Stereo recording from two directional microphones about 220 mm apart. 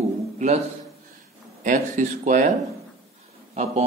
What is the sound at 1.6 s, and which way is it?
Speech, 35° right (ahead or behind).